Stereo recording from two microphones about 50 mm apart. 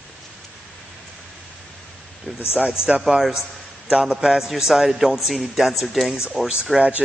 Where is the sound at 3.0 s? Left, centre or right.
Centre.